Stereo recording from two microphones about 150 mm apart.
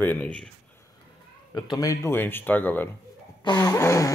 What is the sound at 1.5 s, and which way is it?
Speech, 25° left (ahead or behind).